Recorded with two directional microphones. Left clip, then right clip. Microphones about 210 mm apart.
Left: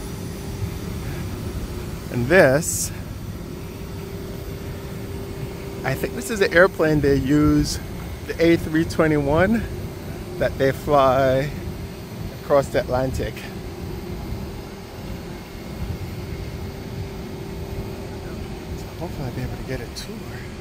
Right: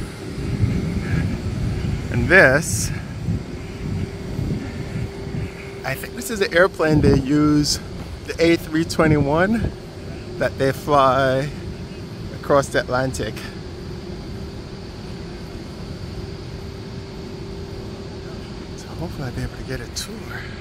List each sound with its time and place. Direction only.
2.2 s speech: 10° left (ahead or behind)
5.9 s speech: 5° left (ahead or behind)